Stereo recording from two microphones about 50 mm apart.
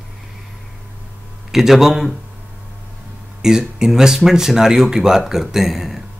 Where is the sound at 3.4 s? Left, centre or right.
Centre.